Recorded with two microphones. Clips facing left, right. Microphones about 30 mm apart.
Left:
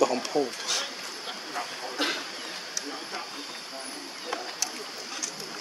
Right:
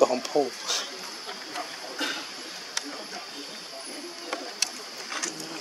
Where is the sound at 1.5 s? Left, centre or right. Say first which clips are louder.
Left 2 dB; left.